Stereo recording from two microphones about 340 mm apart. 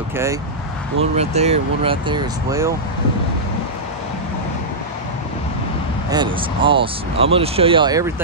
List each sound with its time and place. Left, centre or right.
1.1 s speech: centre
6.0 s speech: centre